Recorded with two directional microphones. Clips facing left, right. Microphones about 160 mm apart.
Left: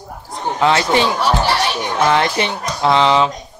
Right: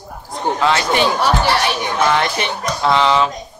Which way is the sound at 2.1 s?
25° left (ahead or behind).